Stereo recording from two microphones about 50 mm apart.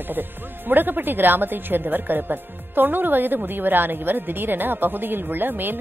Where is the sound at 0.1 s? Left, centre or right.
Right.